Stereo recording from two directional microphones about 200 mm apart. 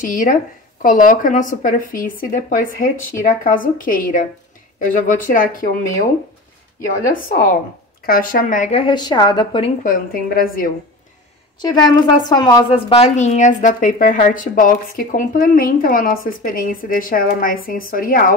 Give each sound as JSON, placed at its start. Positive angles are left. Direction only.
{"t": 0.0, "sound": "a woman's voice", "side_deg": 40}
{"t": 7.2, "sound": "a woman's voice", "side_deg": 40}
{"t": 9.8, "sound": "a woman's voice", "side_deg": 45}
{"t": 11.6, "sound": "a woman's voice", "side_deg": 20}